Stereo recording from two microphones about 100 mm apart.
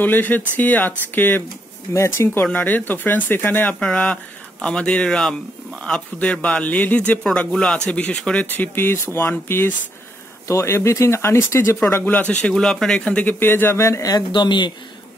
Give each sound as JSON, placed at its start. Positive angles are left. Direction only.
{"t": 0.0, "sound": "a man's voice", "side_deg": 20}
{"t": 8.5, "sound": "speech", "side_deg": 20}
{"t": 12.0, "sound": "a man's voice", "side_deg": 15}
{"t": 14.1, "sound": "speech", "side_deg": 50}